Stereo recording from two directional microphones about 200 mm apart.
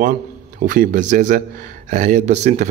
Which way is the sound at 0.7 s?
45° right (ahead or behind).